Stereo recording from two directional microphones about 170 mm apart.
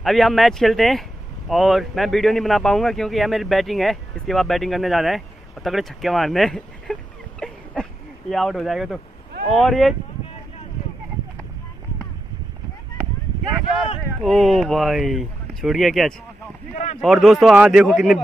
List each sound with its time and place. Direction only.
0.0 s a man's voice: centre (ahead or behind)
14.2 s a man's voice: centre (ahead or behind)
16.7 s speech: 40° left (ahead or behind)
17.0 s a man's voice: centre (ahead or behind)